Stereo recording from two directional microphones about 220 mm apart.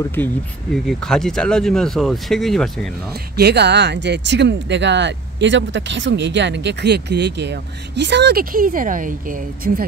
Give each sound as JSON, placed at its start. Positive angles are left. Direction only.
{"t": 0.2, "sound": "speech", "side_deg": 10}
{"t": 3.3, "sound": "speech", "side_deg": -50}